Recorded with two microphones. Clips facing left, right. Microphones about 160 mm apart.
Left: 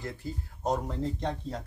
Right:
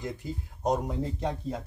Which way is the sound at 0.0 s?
15° right (ahead or behind).